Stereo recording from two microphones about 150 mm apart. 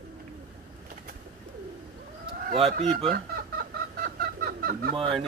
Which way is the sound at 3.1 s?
80° right.